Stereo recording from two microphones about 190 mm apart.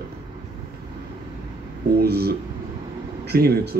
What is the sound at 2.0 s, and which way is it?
A man's voice, 55° right (ahead or behind).